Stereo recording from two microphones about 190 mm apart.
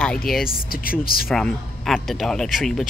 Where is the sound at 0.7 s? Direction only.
50° left (ahead or behind).